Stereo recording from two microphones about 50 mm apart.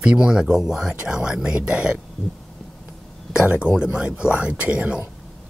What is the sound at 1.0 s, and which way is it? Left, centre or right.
Speech, centre.